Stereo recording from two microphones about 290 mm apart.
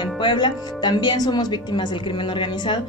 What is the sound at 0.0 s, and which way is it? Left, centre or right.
A woman's voice, centre.